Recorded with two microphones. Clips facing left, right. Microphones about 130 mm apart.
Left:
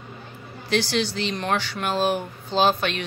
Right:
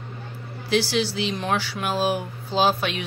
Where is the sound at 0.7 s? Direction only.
5° right (ahead or behind).